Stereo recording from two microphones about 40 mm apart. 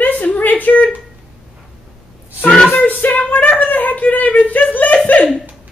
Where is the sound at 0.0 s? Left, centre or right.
Left.